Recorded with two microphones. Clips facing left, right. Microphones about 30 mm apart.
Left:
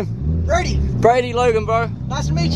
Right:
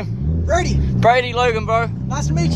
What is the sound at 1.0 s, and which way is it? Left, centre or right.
Speech, right.